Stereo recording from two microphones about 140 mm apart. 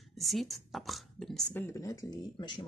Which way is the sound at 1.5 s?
15° left (ahead or behind).